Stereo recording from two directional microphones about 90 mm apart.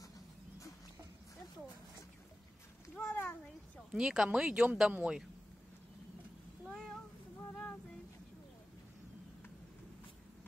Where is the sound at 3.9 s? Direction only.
5° right (ahead or behind).